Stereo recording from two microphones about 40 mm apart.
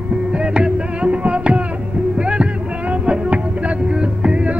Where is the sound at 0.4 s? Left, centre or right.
Right.